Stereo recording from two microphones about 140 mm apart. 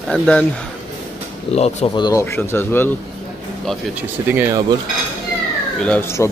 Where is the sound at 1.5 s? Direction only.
50° left (ahead or behind).